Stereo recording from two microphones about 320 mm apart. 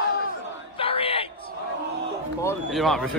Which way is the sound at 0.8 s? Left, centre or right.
Centre.